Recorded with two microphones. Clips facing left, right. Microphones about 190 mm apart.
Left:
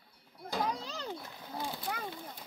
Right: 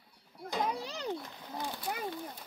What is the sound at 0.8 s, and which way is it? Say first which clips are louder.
Speech: right 4 dB; 15° right (ahead or behind).